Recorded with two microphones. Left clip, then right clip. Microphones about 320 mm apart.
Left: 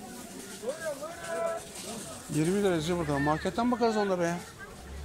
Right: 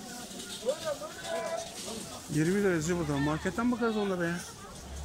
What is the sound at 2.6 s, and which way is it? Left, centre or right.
Speech, centre.